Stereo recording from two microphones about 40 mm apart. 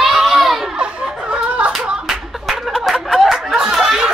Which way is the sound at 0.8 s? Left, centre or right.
Right.